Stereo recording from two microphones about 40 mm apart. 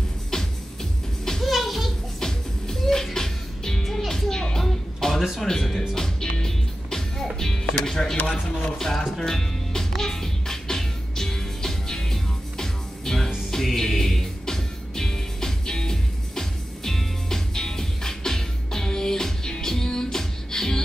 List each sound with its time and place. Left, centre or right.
0.3 s music: centre
1.4 s children playing: centre
2.1 s music: centre
7.7 s speech: centre
8.7 s music: centre